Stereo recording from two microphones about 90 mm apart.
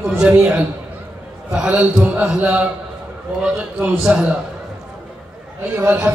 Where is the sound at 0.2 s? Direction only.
10° right (ahead or behind).